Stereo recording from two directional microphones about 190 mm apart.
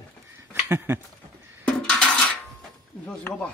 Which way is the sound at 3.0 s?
5° left (ahead or behind).